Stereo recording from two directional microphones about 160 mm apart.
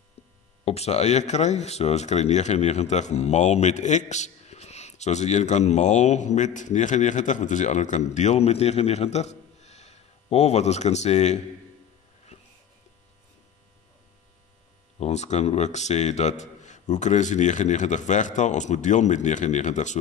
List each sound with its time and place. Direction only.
0.7 s speech: 40° left (ahead or behind)
12.3 s a sound: 40° left (ahead or behind)
15.0 s speech: 45° left (ahead or behind)